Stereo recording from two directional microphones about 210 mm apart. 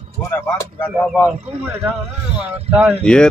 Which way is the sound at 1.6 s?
10° right (ahead or behind).